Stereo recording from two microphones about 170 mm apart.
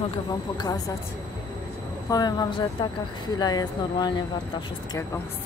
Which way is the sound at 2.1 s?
25° left (ahead or behind).